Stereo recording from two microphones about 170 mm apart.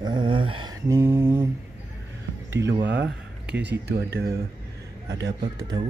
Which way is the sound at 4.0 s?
70° right (ahead or behind).